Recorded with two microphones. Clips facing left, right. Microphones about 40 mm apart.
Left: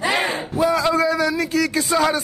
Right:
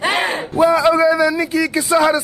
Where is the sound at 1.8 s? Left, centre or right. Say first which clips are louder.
Right 6 dB; centre.